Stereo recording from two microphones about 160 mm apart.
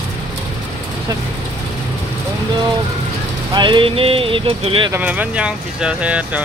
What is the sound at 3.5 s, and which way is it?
Speech, 30° right (ahead or behind).